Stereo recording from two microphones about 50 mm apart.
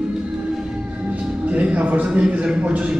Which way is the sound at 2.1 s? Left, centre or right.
Right.